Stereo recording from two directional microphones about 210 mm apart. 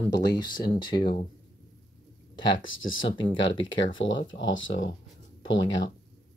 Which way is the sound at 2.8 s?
70° left (ahead or behind).